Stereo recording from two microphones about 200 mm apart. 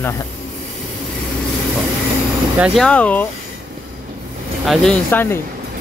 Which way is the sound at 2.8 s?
5° left (ahead or behind).